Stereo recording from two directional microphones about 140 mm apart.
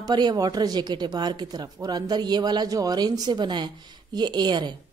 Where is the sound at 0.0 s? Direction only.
30° right (ahead or behind).